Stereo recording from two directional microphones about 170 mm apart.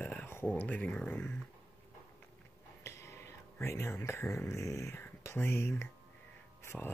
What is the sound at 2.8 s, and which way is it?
Speech, 15° left (ahead or behind).